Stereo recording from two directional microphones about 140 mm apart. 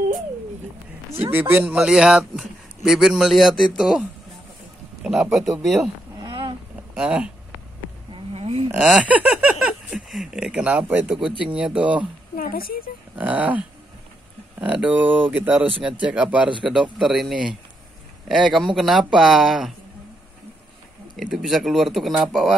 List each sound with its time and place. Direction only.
1.3 s a man's voice: 15° right (ahead or behind)
5.0 s a man's voice: 5° right (ahead or behind)
6.2 s a sound: 35° right (ahead or behind)
7.0 s a man's voice: 5° right (ahead or behind)
8.1 s a sound: 45° right (ahead or behind)
8.7 s speech: 5° right (ahead or behind)
12.4 s speech: 90° left
13.2 s a man's voice: 10° right (ahead or behind)
21.3 s a man's voice: centre (ahead or behind)